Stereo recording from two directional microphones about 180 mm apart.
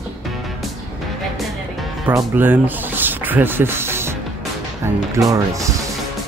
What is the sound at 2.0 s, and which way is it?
Speech, 10° right (ahead or behind).